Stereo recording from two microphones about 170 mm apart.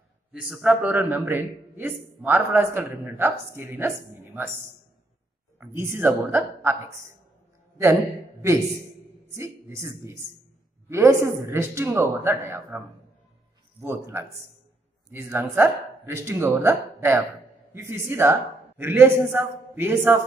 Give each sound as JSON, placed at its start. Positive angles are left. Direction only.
{"t": 0.3, "sound": "a man's voice", "side_deg": -5}
{"t": 5.6, "sound": "a man's voice", "side_deg": -15}
{"t": 13.7, "sound": "a man's voice", "side_deg": -15}